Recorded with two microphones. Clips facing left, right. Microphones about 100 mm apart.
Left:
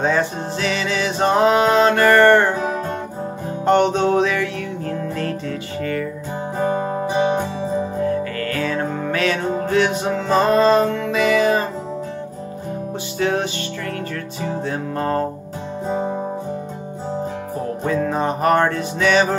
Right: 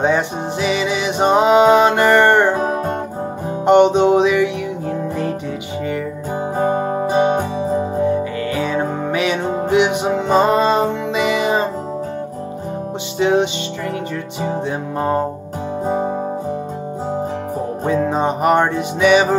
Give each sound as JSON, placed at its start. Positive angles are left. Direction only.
{"t": 0.0, "sound": "music", "side_deg": -20}
{"t": 2.5, "sound": "music", "side_deg": -45}
{"t": 3.6, "sound": "music", "side_deg": -20}
{"t": 6.6, "sound": "music", "side_deg": -20}
{"t": 13.2, "sound": "music", "side_deg": -20}
{"t": 15.0, "sound": "music", "side_deg": -15}
{"t": 17.8, "sound": "music", "side_deg": -20}